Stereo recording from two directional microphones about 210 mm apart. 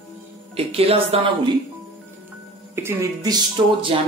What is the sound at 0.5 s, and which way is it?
Speech, 30° right (ahead or behind).